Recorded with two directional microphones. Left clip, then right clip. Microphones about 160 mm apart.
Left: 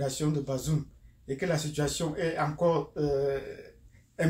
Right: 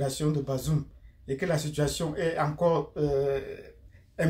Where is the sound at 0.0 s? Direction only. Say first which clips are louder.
Right 1 dB; 20° right (ahead or behind).